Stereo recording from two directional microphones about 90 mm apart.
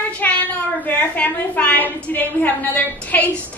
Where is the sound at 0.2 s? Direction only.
20° left (ahead or behind).